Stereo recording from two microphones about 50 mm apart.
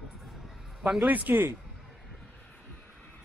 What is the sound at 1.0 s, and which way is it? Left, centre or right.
Speech, right.